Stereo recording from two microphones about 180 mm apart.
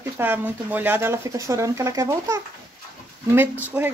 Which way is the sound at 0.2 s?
10° right (ahead or behind).